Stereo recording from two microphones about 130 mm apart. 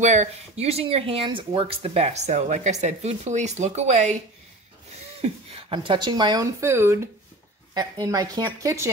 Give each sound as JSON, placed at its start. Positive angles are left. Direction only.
{"t": 0.0, "sound": "speech", "side_deg": -60}
{"t": 5.2, "sound": "a woman's voice", "side_deg": -45}